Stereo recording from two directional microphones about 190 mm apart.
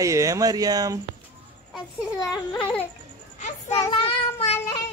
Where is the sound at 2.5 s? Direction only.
5° left (ahead or behind).